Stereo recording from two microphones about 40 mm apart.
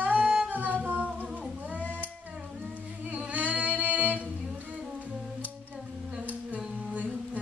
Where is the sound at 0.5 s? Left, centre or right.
Right.